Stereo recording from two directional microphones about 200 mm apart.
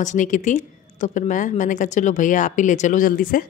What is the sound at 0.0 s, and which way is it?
Speech, 40° left (ahead or behind).